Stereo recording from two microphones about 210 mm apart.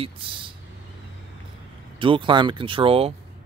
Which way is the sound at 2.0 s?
25° right (ahead or behind).